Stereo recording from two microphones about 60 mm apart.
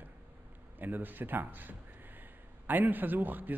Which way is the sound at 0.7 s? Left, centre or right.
Right.